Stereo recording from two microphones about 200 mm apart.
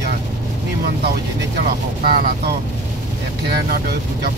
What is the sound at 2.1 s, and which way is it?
Speech, 50° right (ahead or behind).